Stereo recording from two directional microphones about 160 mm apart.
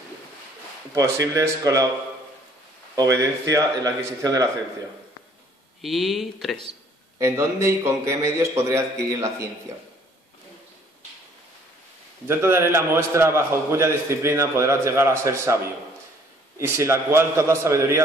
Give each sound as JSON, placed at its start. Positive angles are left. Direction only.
{"t": 0.9, "sound": "speech", "side_deg": -20}
{"t": 3.0, "sound": "speech", "side_deg": -20}
{"t": 5.8, "sound": "speech", "side_deg": 0}
{"t": 7.2, "sound": "a man's voice", "side_deg": -15}
{"t": 12.3, "sound": "a man's voice", "side_deg": -15}
{"t": 16.5, "sound": "a man's voice", "side_deg": -15}